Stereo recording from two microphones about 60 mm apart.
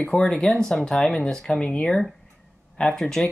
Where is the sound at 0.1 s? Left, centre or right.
Centre.